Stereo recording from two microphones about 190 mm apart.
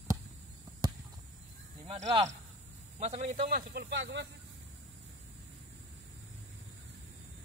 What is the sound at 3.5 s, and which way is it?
Speech, 60° right (ahead or behind).